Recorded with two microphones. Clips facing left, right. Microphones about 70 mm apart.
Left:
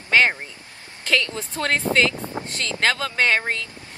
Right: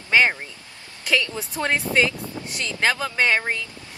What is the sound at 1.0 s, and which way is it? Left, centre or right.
A woman's voice, centre.